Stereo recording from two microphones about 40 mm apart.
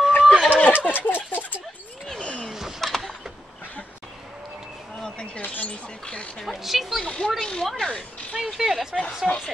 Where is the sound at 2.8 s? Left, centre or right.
Centre.